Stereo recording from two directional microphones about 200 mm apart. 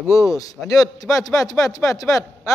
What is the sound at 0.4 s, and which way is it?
A man's voice, 15° left (ahead or behind).